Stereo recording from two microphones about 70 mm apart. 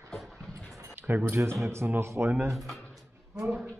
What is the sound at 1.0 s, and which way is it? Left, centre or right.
Speech, right.